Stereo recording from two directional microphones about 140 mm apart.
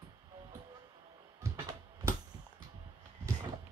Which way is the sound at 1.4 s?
25° right (ahead or behind).